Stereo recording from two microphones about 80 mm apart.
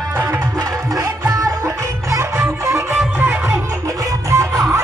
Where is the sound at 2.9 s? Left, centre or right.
Right.